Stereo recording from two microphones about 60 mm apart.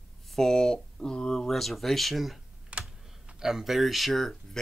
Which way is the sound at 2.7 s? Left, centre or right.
Centre.